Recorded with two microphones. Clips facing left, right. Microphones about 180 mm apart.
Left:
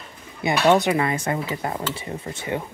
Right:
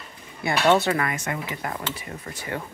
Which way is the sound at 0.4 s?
15° left (ahead or behind).